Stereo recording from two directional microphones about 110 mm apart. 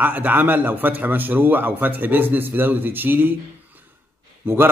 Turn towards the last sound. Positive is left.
turn(degrees=-20)  # may be behind; listen again after turning